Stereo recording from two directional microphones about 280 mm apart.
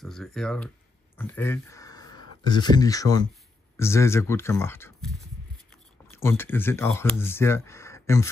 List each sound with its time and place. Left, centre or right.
0.0 s speech: centre
6.0 s speech: centre